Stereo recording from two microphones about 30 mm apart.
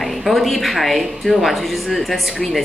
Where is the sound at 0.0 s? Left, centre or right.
Centre.